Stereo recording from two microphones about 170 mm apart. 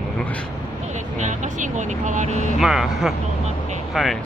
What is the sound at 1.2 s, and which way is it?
Speech, 45° right (ahead or behind).